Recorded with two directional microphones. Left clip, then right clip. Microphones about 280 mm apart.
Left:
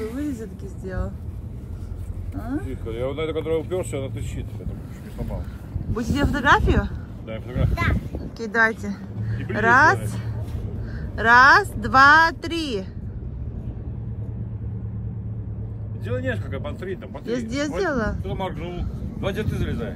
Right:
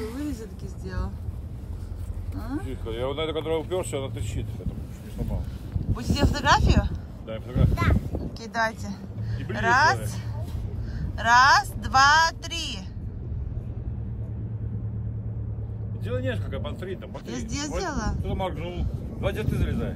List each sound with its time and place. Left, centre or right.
0.0 s a sound: centre
2.3 s speech: centre
2.8 s speech: right
5.9 s speech: centre
8.8 s speech: centre
16.1 s speech: centre